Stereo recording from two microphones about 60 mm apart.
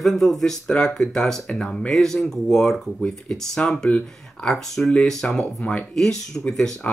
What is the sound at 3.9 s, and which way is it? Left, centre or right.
Speech, left.